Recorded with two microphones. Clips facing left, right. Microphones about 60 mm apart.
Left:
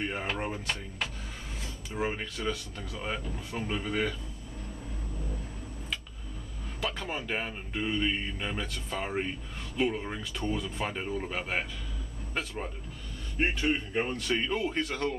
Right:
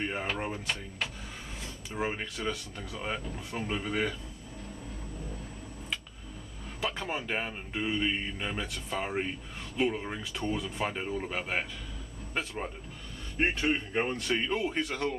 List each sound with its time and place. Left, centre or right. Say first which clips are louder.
0.0 s speech: even; centre
2.0 s speech: left 1 dB; centre
7.0 s speech: even; centre